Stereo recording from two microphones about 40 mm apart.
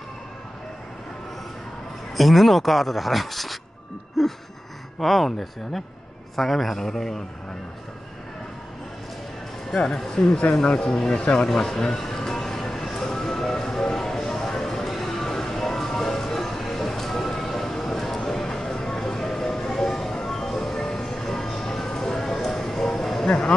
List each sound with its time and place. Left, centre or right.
2.1 s speech: centre
4.2 s gasp: centre
4.9 s a man's voice: centre
9.8 s a man's voice: centre
12.4 s music: centre
22.5 s a sound: centre